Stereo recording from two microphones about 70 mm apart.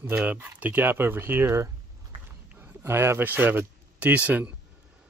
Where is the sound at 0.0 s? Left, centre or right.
Right.